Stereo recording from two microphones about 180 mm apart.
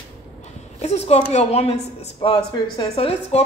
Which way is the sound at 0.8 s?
35° left (ahead or behind).